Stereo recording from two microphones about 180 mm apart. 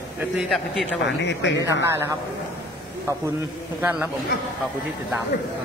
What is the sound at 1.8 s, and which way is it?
Speech, 15° right (ahead or behind).